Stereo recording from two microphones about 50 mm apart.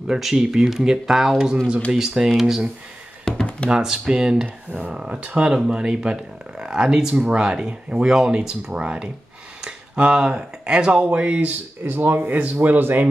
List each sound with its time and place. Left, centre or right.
0.0 s speech: centre
3.3 s a sound: centre
3.7 s speech: centre
11.8 s speech: right